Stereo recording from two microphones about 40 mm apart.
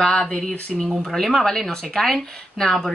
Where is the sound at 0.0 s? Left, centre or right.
Centre.